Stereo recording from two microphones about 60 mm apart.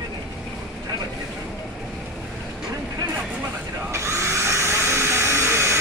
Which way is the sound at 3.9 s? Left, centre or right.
Right.